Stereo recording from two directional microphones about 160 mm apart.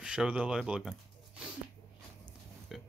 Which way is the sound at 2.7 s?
Centre (ahead or behind).